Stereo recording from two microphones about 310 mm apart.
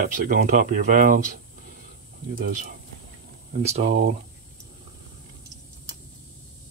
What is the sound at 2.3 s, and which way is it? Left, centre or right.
Speech, right.